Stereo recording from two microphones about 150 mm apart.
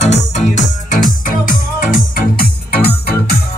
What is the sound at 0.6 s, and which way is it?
Music, 60° left (ahead or behind).